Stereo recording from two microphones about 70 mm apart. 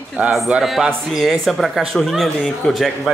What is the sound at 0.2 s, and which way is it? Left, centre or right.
Speech, centre.